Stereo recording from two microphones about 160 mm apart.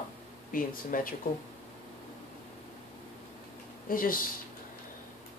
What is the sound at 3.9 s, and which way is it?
Speech, 60° left (ahead or behind).